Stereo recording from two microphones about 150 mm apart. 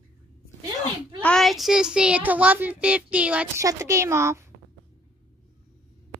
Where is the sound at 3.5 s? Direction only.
20° right (ahead or behind).